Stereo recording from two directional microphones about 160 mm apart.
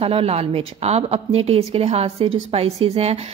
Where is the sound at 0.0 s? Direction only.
40° right (ahead or behind).